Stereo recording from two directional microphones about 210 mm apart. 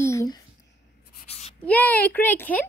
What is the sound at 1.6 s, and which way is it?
A child's voice, 5° left (ahead or behind).